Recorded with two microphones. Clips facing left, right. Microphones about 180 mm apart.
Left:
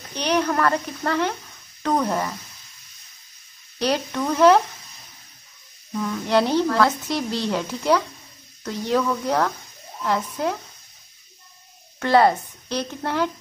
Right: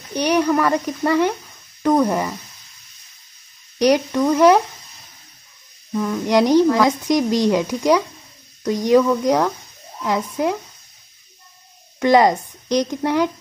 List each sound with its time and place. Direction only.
0.1 s speech: 10° right (ahead or behind)
3.8 s speech: 10° right (ahead or behind)
5.9 s speech: 10° right (ahead or behind)
12.0 s speech: 15° right (ahead or behind)